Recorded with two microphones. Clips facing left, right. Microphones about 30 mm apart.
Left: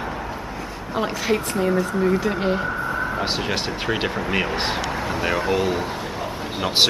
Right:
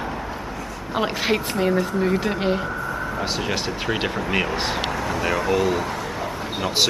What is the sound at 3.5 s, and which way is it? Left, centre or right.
A woman's voice, centre.